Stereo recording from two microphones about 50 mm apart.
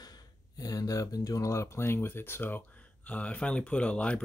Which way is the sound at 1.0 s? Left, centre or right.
Left.